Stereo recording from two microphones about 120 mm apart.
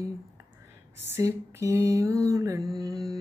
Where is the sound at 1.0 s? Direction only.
20° right (ahead or behind).